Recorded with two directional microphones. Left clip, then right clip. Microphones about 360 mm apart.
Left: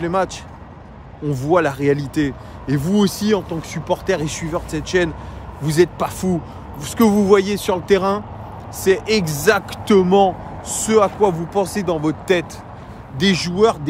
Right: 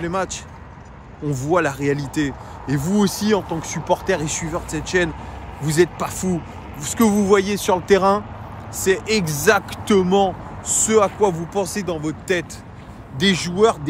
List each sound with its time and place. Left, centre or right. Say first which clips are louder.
0.0 s speech: left 4 dB; centre